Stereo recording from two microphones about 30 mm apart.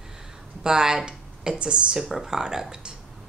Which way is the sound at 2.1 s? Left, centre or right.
Centre.